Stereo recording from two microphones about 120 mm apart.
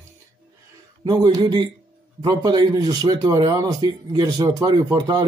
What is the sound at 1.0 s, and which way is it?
Speech, 35° right (ahead or behind).